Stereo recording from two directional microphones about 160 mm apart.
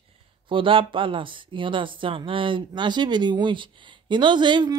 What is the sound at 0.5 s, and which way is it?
Speech, 30° right (ahead or behind).